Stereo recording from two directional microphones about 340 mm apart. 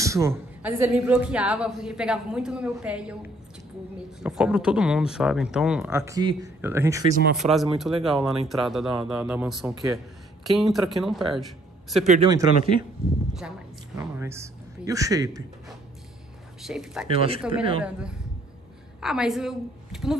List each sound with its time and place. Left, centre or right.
0.0 s a woman's voice: centre
12.1 s a man's voice: centre
13.9 s speech: centre
16.6 s a woman's voice: centre
17.1 s a man's voice: centre
18.9 s a woman's voice: centre